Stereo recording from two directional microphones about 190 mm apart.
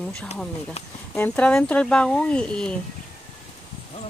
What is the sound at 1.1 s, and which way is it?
Speech, 10° left (ahead or behind).